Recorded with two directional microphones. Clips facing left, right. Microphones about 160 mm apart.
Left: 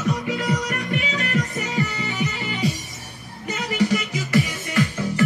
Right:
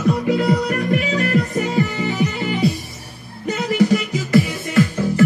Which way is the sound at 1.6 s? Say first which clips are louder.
Right 6 dB; 40° right (ahead or behind).